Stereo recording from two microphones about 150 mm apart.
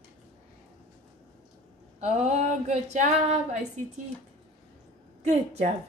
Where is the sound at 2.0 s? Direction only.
50° right (ahead or behind).